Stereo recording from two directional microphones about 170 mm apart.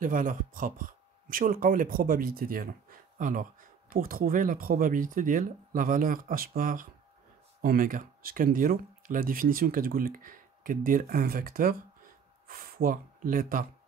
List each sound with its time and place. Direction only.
0.0 s speech: 50° right (ahead or behind)